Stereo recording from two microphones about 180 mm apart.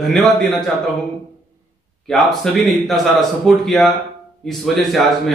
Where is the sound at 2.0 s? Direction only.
Centre (ahead or behind).